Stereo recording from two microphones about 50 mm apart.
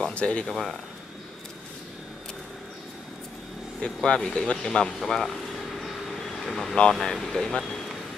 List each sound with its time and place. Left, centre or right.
0.1 s speech: left
0.5 s speech: centre
3.8 s speech: centre
6.4 s speech: centre